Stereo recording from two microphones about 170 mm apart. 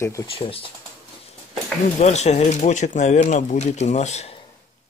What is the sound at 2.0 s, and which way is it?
Speech, 40° left (ahead or behind).